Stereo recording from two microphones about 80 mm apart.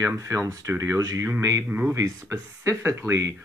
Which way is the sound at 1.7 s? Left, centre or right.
Right.